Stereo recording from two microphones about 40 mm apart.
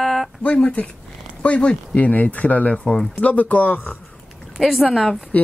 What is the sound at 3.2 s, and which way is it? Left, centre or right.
Speech, left.